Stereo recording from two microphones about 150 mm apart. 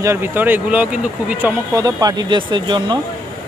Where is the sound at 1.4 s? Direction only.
20° right (ahead or behind).